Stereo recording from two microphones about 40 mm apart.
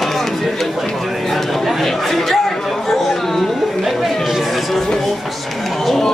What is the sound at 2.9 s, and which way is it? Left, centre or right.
Chatter, centre.